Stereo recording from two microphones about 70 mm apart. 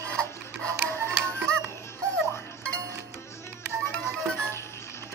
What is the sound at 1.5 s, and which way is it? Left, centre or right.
Music, centre.